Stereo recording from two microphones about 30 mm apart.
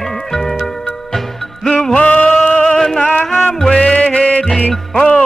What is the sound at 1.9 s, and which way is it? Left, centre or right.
Music, left.